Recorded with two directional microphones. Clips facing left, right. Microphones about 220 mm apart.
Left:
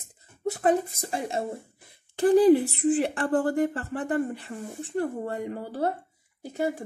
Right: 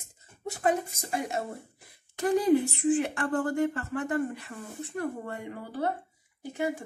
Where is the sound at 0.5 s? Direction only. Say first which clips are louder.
Left 4 dB; 35° left (ahead or behind).